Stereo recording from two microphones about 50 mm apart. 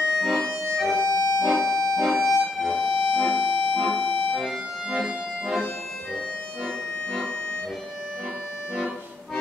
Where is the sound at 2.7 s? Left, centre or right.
Left.